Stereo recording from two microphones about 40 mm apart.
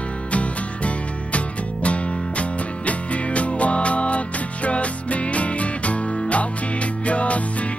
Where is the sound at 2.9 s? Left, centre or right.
Left.